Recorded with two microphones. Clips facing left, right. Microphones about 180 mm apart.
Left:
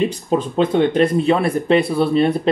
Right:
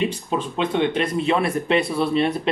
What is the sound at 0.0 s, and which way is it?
Speech, 40° left (ahead or behind).